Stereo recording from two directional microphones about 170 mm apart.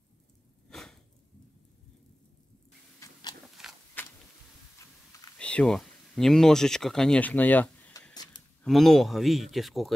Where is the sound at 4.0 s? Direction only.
10° left (ahead or behind).